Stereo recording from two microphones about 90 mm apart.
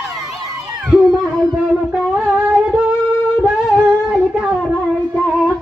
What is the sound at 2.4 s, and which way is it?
Music, 10° right (ahead or behind).